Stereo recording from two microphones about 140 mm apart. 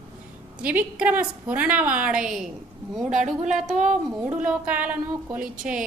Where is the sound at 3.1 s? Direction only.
60° right (ahead or behind).